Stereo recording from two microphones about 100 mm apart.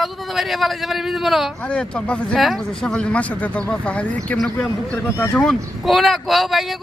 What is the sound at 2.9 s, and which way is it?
Speech, 10° left (ahead or behind).